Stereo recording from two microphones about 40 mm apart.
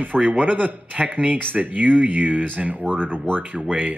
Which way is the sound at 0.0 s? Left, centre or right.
Right.